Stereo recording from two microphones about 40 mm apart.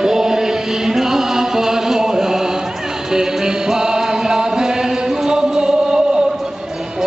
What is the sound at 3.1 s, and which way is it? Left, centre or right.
Music, centre.